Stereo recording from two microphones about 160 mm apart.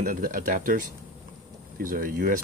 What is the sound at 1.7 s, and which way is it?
Speech, 60° right (ahead or behind).